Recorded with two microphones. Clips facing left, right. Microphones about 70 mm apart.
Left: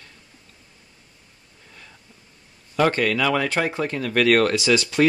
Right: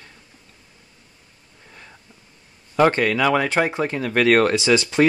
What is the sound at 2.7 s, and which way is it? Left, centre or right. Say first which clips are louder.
Speech: right 3 dB; right.